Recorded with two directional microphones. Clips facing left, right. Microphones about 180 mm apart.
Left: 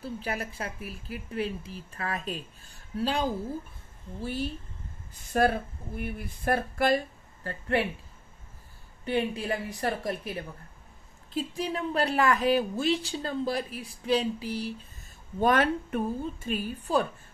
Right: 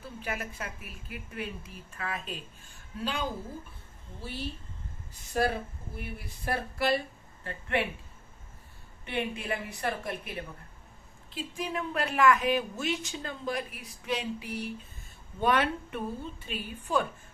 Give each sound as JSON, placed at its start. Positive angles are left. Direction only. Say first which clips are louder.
{"t": 0.0, "sound": "a woman's voice", "louder": "left 4 dB", "side_deg": 35}
{"t": 4.2, "sound": "a woman's voice", "louder": "left 6 dB", "side_deg": 45}
{"t": 7.4, "sound": "a woman's voice", "louder": "left 3 dB", "side_deg": 35}
{"t": 9.0, "sound": "a woman's voice", "louder": "left 5 dB", "side_deg": 35}
{"t": 15.4, "sound": "a woman's voice", "louder": "left 3 dB", "side_deg": 45}